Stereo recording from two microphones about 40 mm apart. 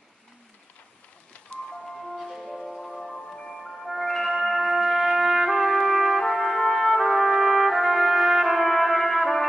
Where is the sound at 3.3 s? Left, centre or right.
Centre.